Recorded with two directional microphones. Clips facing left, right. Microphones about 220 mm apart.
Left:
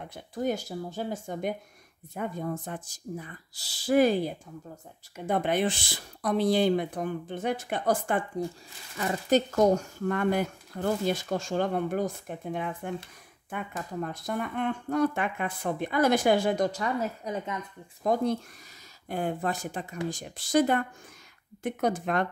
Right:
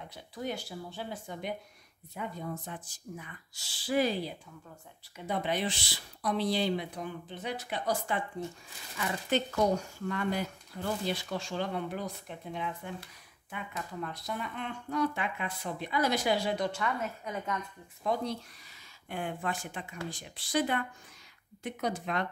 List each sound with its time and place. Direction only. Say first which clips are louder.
0.1 s speech: left 8 dB; 45° left (ahead or behind)
8.9 s speech: left 6 dB; 40° left (ahead or behind)
18.0 s speech: left 6 dB; 50° left (ahead or behind)